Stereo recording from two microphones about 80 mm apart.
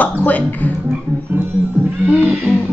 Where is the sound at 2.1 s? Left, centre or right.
Centre.